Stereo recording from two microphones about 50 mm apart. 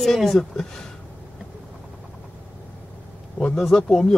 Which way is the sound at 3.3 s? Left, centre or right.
Centre.